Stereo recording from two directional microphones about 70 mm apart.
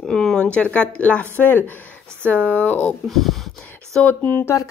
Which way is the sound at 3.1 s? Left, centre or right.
Centre.